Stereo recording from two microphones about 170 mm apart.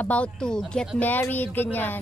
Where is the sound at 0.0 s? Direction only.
5° left (ahead or behind).